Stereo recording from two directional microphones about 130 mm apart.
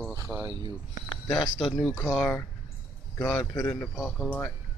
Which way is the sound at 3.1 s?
15° left (ahead or behind).